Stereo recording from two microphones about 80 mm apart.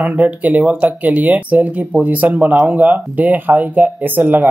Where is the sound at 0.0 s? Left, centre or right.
Right.